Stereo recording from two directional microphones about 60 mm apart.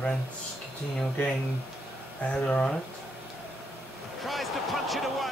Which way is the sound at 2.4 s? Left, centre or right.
Centre.